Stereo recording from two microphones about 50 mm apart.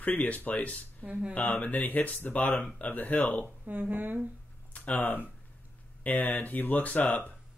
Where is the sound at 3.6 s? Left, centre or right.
Right.